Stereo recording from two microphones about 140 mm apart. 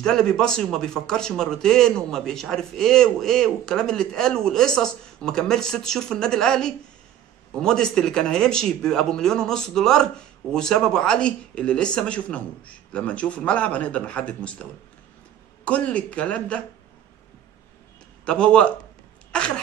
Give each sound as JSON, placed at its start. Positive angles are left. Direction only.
{"t": 0.0, "sound": "a man's voice", "side_deg": 5}
{"t": 18.2, "sound": "speech", "side_deg": 5}